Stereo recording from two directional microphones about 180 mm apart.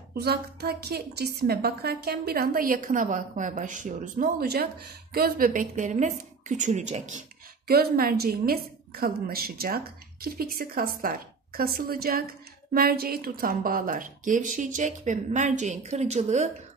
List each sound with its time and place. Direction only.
0.1 s a woman's voice: 65° right (ahead or behind); by 7.2 s 40° right (ahead or behind)
7.6 s a woman's voice: 60° right (ahead or behind); by 16.4 s 40° right (ahead or behind)